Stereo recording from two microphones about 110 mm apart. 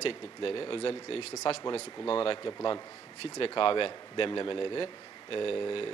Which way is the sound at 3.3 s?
55° left (ahead or behind).